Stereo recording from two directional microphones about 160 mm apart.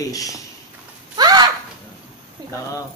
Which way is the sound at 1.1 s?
25° right (ahead or behind).